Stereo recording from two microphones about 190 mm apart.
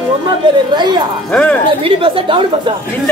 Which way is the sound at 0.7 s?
25° right (ahead or behind).